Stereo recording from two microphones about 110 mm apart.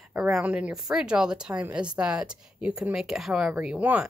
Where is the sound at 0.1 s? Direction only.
5° right (ahead or behind).